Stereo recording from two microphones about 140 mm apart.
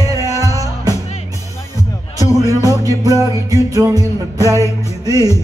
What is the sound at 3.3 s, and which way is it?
Music, 25° right (ahead or behind).